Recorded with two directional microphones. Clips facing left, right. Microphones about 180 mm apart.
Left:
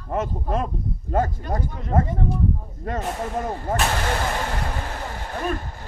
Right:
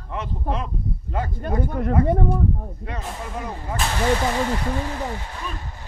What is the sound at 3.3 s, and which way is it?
Speech, 45° left (ahead or behind).